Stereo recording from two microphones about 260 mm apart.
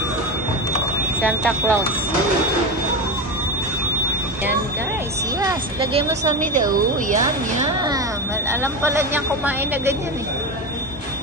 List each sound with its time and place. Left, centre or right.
1.2 s speech: centre
5.4 s speech: centre
8.5 s speech: centre